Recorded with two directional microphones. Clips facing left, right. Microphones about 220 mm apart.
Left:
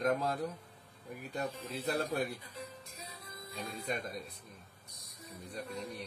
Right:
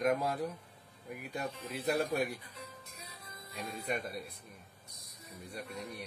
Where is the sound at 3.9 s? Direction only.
10° right (ahead or behind).